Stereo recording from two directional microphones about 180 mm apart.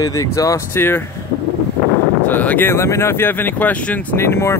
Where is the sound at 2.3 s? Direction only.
10° left (ahead or behind).